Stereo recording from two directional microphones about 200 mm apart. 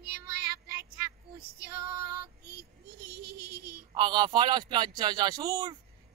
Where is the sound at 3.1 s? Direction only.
55° right (ahead or behind).